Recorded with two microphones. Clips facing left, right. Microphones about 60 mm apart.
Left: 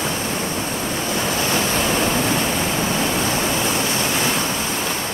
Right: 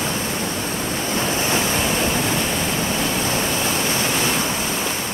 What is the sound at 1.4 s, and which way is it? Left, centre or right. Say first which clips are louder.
Waves: left 1 dB; right.